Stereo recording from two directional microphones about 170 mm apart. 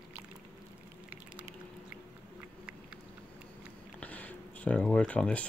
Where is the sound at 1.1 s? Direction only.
10° right (ahead or behind).